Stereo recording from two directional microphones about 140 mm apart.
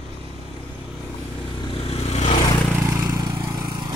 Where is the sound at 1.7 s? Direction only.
40° left (ahead or behind).